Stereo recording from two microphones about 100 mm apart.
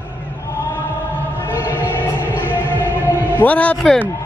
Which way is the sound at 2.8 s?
20° right (ahead or behind).